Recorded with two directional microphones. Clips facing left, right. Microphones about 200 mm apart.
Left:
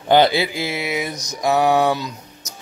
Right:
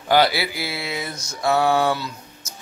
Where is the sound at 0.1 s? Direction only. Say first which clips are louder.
Left 3 dB; 20° left (ahead or behind).